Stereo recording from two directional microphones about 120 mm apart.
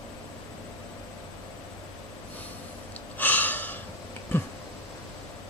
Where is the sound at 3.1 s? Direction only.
15° left (ahead or behind).